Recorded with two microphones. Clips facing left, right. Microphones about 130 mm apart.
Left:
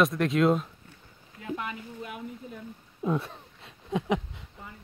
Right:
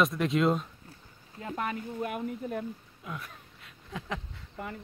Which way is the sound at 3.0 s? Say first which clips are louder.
Left 12 dB; 30° left (ahead or behind).